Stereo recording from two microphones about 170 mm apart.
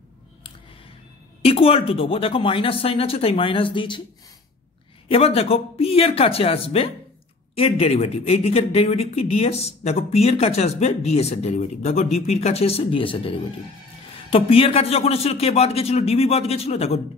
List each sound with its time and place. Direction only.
1.4 s speech: 35° left (ahead or behind)
5.0 s speech: 35° left (ahead or behind)